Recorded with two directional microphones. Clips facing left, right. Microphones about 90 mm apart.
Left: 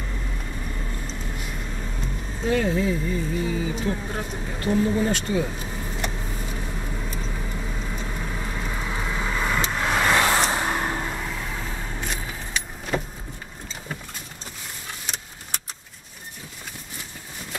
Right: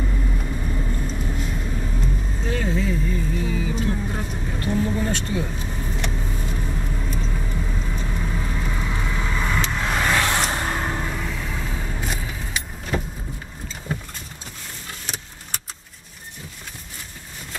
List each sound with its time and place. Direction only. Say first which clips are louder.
0.4 s vehicle: right 5 dB; 10° right (ahead or behind)